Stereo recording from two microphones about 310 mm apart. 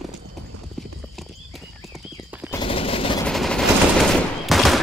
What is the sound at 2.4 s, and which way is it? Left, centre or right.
Machine gun, centre.